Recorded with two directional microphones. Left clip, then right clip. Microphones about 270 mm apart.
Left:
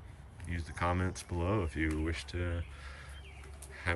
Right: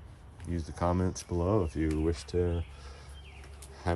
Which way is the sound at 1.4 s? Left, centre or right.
Centre.